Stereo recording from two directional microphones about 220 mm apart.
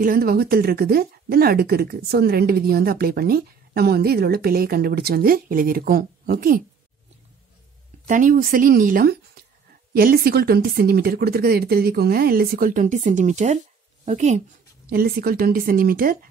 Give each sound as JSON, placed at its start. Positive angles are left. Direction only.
{"t": 0.0, "sound": "speech", "side_deg": -40}
{"t": 8.1, "sound": "a woman's voice", "side_deg": -35}
{"t": 14.9, "sound": "a woman's voice", "side_deg": -45}